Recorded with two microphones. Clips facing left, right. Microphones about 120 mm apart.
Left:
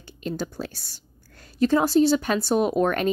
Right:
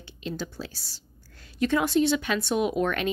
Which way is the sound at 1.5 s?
35° left (ahead or behind).